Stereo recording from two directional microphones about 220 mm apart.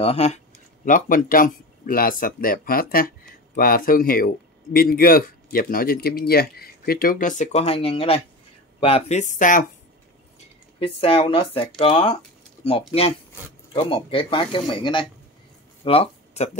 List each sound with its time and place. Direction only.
0.0 s speech: 30° left (ahead or behind)
10.8 s speech: 25° left (ahead or behind)
13.7 s speech: 25° left (ahead or behind)
15.8 s a sound: 25° left (ahead or behind)